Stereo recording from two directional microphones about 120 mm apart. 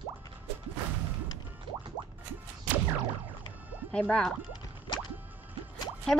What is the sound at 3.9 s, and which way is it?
Speech, 10° left (ahead or behind).